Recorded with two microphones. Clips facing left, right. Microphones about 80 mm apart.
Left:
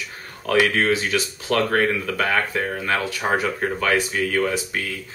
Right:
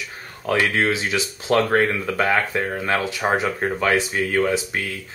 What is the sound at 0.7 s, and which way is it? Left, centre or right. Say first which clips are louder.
Speech: left 1 dB; right.